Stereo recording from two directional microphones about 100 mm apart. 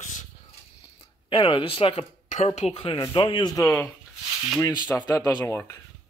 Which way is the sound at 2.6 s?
75° left (ahead or behind).